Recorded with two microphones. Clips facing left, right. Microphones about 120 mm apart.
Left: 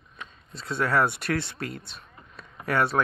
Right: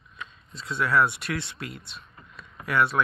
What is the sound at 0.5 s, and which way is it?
Speech, 45° left (ahead or behind).